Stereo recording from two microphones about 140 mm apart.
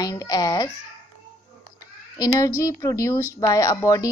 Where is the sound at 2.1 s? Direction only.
25° left (ahead or behind).